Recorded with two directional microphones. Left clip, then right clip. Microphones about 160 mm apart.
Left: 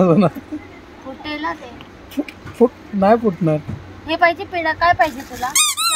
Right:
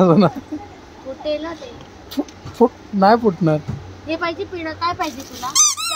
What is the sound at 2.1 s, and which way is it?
Speech, centre (ahead or behind).